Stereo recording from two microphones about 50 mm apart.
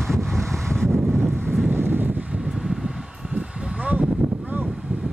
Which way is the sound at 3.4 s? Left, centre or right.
Right.